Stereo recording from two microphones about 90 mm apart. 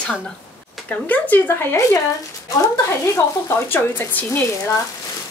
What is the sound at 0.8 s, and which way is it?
Speech, 15° left (ahead or behind).